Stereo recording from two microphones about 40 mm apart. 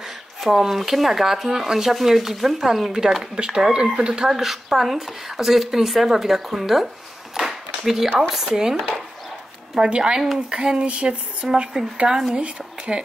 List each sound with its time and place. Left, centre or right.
0.4 s speech: centre
4.3 s speech: centre
7.3 s a sound: centre
8.2 s speech: centre
9.8 s speech: right
11.4 s speech: centre
12.4 s speech: right